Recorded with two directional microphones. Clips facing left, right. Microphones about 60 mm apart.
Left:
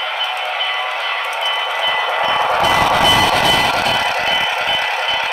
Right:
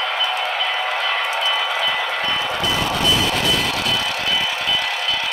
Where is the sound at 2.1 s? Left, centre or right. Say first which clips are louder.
Left 7 dB; left.